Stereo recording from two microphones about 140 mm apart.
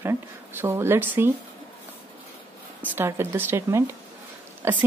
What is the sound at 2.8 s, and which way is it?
Speech, 15° right (ahead or behind).